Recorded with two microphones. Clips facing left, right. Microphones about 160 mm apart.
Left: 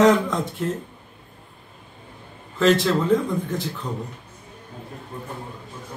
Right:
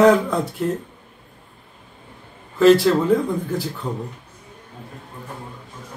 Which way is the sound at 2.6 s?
5° right (ahead or behind).